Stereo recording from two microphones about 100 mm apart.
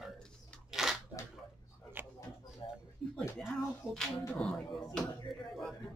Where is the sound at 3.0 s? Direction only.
5° left (ahead or behind).